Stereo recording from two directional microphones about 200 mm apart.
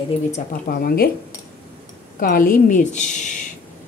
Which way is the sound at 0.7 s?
50° left (ahead or behind).